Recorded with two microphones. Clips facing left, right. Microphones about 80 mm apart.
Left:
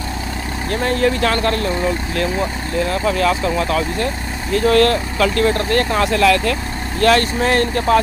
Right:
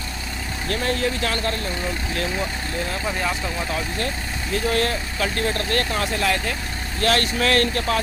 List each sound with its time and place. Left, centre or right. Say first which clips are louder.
0.7 s speech: left 7 dB; left
2.9 s speech: left 9 dB; left
4.0 s speech: left 5 dB; left
5.6 s speech: left 6 dB; left
5.9 s speech: left 7 dB; left
6.1 s speech: left 10 dB; left
7.0 s speech: left 7 dB; left
7.3 s speech: left 4 dB; left